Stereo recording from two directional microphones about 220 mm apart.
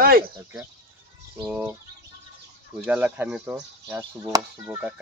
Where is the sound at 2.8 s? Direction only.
5° right (ahead or behind).